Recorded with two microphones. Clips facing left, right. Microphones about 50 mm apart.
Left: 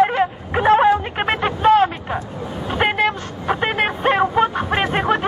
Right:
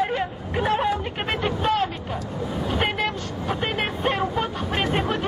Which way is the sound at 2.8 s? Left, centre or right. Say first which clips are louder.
Left 9 dB; left.